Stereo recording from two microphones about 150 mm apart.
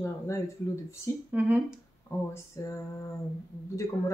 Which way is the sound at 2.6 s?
15° left (ahead or behind).